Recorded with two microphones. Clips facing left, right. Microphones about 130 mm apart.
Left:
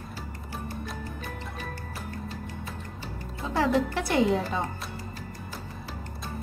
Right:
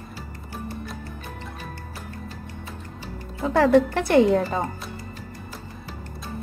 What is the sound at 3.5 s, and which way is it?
Speech, 55° right (ahead or behind).